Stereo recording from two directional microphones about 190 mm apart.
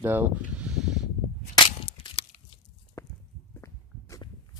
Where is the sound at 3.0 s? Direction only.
15° left (ahead or behind).